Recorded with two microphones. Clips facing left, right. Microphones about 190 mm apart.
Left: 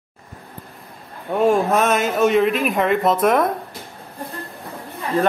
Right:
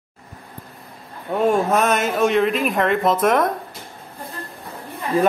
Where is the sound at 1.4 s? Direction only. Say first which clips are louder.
Left 1 dB; centre (ahead or behind).